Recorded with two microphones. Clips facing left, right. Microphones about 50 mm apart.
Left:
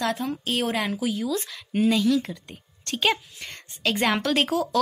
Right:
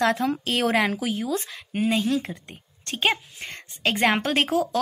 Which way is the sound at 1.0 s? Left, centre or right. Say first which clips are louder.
Even; right.